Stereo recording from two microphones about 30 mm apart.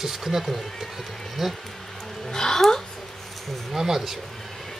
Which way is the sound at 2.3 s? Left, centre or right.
Centre.